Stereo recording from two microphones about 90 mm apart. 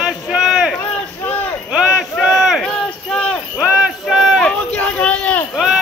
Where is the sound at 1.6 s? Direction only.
10° right (ahead or behind).